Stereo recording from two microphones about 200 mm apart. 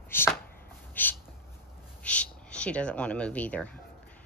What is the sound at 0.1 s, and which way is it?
Speech, 10° left (ahead or behind).